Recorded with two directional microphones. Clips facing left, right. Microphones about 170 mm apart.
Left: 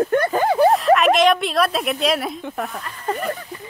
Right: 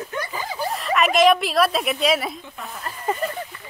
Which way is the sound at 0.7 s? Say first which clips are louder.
Left 4 dB; centre (ahead or behind).